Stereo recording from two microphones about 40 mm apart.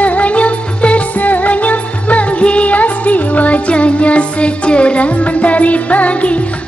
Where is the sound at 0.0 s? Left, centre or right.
Left.